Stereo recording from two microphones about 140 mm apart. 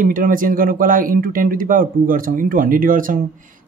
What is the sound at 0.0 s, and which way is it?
Speech, 80° right.